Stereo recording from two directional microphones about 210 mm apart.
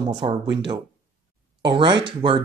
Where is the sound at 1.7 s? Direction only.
20° right (ahead or behind).